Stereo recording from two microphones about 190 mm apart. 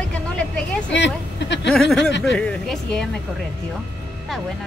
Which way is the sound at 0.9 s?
70° left (ahead or behind).